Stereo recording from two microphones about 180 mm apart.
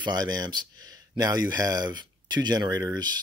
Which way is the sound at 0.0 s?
20° right (ahead or behind).